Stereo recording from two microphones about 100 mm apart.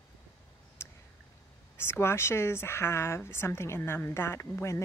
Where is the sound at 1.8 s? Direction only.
25° left (ahead or behind).